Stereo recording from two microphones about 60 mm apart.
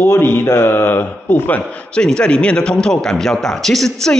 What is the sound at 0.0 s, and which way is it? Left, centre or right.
Speech, left.